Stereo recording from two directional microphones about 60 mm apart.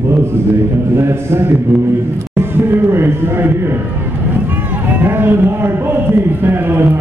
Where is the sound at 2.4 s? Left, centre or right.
Right.